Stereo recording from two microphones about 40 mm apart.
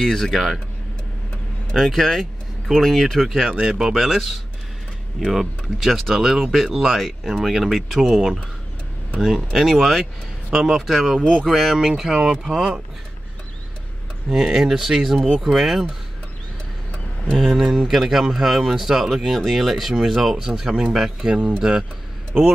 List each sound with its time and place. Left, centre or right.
0.0 s speech: centre
1.7 s speech: centre
3.5 s speech: centre
3.9 s speech: centre
9.2 s speech: centre
14.3 s speech: centre
17.4 s speech: centre
21.4 s speech: right